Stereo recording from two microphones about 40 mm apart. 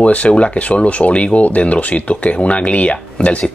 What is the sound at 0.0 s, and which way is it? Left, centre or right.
Speech, left.